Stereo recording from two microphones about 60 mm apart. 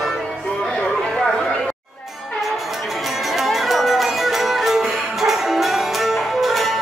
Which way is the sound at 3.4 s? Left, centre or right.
Centre.